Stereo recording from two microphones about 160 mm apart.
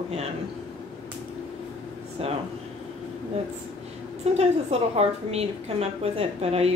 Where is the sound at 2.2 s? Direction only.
40° right (ahead or behind).